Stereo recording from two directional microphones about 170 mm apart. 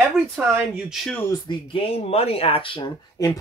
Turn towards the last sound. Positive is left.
turn(degrees=30)  # may be behind; listen again after turning